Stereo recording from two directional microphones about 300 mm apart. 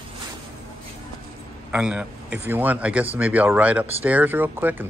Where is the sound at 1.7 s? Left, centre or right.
Centre.